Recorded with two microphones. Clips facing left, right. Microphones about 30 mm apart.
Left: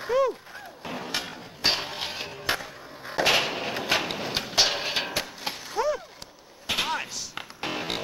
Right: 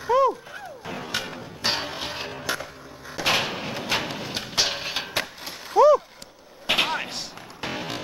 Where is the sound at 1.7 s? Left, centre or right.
Right.